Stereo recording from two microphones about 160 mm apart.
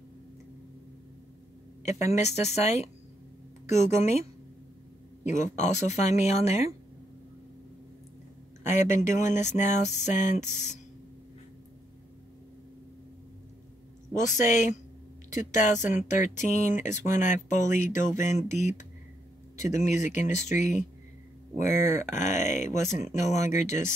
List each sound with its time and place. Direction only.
1.8 s speech: 45° left (ahead or behind)
5.2 s speech: 50° left (ahead or behind)
8.7 s speech: 50° left (ahead or behind)
14.2 s speech: 50° left (ahead or behind)